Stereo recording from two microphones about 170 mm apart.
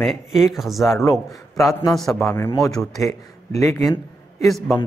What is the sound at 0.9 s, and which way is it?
Speech, 15° left (ahead or behind).